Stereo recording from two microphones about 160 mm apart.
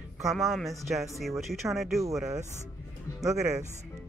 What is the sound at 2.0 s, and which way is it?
Speech, 20° right (ahead or behind).